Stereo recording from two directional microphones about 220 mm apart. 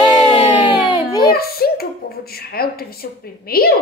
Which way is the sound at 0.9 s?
15° left (ahead or behind).